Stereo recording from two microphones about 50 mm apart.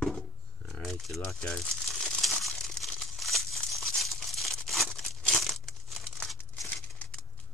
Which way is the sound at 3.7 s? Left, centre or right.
Centre.